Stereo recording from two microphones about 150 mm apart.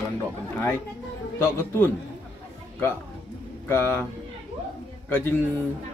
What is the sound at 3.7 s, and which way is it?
Speech, 15° left (ahead or behind).